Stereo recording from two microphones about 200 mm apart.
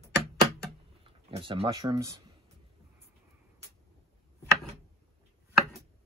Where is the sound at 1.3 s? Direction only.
25° right (ahead or behind).